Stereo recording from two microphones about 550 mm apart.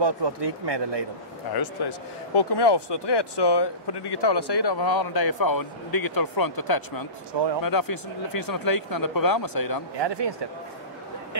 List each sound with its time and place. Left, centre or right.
0.0 s speech: right
1.5 s a man's voice: left
9.9 s speech: right